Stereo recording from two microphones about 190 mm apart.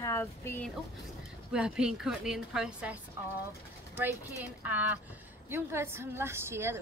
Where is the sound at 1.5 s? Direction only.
5° right (ahead or behind).